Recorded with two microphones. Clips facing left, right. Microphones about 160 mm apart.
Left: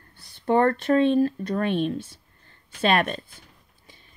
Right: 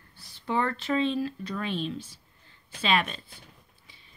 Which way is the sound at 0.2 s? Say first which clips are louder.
Left 8 dB; 55° left (ahead or behind).